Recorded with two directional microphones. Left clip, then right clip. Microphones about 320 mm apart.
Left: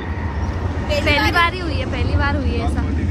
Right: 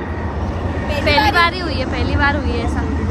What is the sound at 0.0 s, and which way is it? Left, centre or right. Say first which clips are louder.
Vehicle: right 3 dB; right.